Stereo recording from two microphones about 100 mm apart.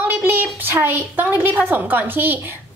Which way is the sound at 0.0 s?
20° right (ahead or behind).